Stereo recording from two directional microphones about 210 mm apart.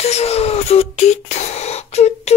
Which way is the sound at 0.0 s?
30° left (ahead or behind).